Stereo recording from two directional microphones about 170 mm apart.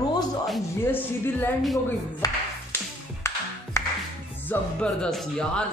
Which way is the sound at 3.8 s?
15° left (ahead or behind).